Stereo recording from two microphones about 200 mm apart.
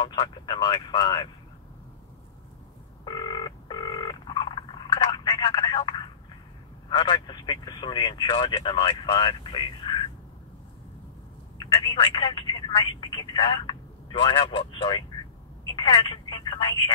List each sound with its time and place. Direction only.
0.0 s speech: 20° left (ahead or behind)
3.1 s telephone: 20° left (ahead or behind)
6.9 s speech: 20° left (ahead or behind)
11.5 s speech: 25° left (ahead or behind)